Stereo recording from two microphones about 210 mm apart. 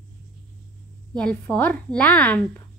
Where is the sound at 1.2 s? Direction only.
5° left (ahead or behind).